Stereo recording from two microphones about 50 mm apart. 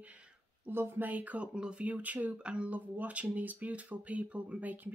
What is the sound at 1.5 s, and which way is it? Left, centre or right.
Speech, centre.